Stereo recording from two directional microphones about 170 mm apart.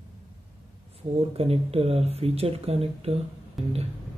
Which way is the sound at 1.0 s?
35° right (ahead or behind).